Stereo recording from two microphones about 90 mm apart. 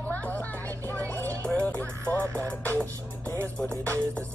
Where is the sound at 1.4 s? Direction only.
15° left (ahead or behind).